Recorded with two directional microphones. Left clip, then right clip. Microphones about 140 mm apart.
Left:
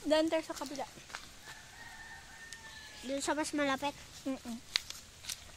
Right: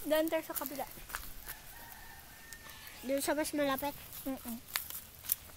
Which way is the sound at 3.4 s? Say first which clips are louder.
Even; 25° left (ahead or behind).